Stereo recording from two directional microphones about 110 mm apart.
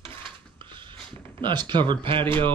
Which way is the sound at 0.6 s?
45° right (ahead or behind).